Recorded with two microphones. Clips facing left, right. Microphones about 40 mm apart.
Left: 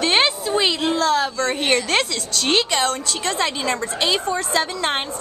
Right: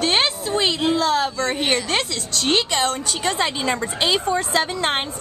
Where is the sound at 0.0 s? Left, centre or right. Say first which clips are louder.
Left 2 dB; centre.